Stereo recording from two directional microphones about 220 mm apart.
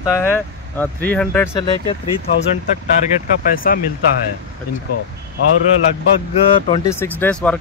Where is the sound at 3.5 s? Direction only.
40° left (ahead or behind).